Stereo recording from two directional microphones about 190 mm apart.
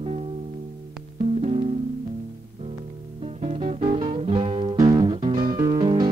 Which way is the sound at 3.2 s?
35° right (ahead or behind).